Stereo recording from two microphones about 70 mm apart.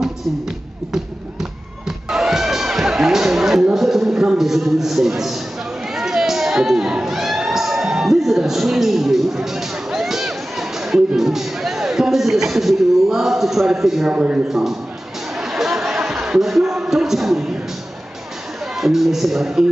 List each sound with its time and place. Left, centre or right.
0.9 s music: centre
3.7 s speech: centre
5.9 s a sound: centre
14.1 s speech: centre
14.5 s speech: centre
15.3 s a sound: centre
18.8 s speech: centre